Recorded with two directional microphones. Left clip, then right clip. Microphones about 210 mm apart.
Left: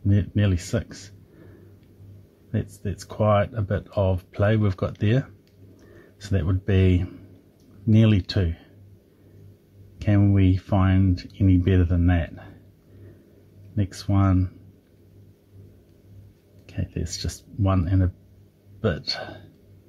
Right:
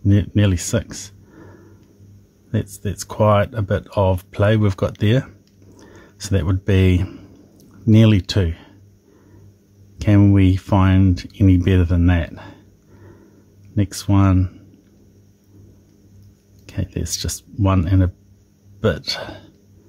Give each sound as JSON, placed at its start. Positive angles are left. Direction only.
{"t": 0.1, "sound": "speech", "side_deg": -25}
{"t": 2.5, "sound": "speech", "side_deg": -25}
{"t": 9.9, "sound": "speech", "side_deg": -25}
{"t": 13.7, "sound": "speech", "side_deg": -25}
{"t": 16.6, "sound": "speech", "side_deg": -25}